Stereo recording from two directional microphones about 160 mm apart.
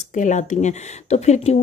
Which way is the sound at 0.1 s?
50° left (ahead or behind).